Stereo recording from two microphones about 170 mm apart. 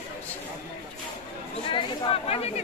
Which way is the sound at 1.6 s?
30° left (ahead or behind).